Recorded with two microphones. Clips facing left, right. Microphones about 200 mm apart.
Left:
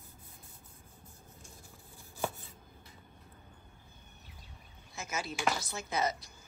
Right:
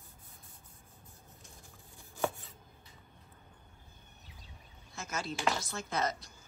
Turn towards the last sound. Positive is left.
turn(degrees=5)  # may be behind; listen again after turning